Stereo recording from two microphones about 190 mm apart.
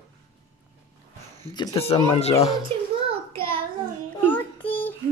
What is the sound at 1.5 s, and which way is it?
Speech, 20° left (ahead or behind).